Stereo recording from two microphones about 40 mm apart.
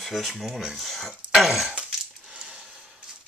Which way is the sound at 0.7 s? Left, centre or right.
Centre.